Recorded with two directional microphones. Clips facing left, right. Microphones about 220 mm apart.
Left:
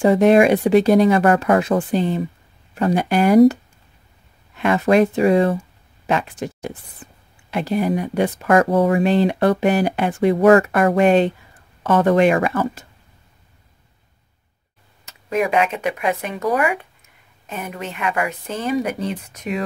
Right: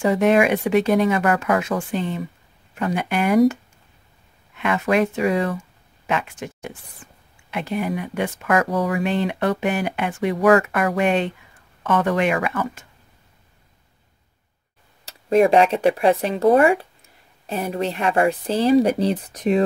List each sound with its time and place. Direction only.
0.0 s speech: 35° left (ahead or behind)
4.6 s speech: 35° left (ahead or behind)
15.0 s speech: 35° right (ahead or behind)